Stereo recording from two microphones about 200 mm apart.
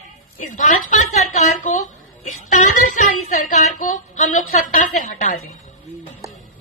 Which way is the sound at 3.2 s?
40° left (ahead or behind).